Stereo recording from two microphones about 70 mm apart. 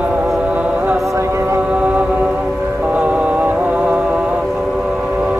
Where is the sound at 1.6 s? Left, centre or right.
Centre.